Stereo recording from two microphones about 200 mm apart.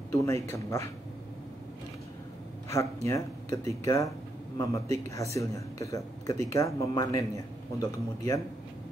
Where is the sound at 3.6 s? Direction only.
30° right (ahead or behind).